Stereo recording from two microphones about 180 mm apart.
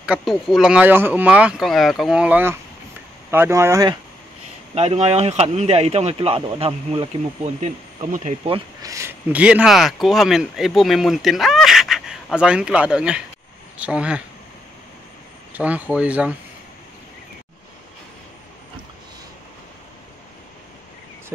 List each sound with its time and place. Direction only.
0.0 s speech: 5° right (ahead or behind)
4.7 s speech: 35° right (ahead or behind)
8.8 s speech: 15° right (ahead or behind)
15.5 s speech: 10° right (ahead or behind)